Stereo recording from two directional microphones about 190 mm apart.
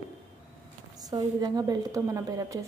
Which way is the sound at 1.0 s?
20° right (ahead or behind).